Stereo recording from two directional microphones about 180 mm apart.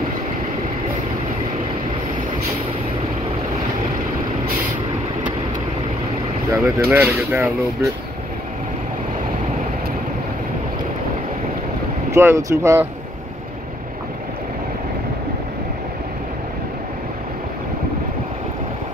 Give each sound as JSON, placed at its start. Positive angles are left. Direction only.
{"t": 6.5, "sound": "speech", "side_deg": -15}
{"t": 12.1, "sound": "speech", "side_deg": -15}